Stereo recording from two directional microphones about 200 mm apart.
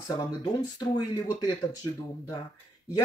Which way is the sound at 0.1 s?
20° left (ahead or behind).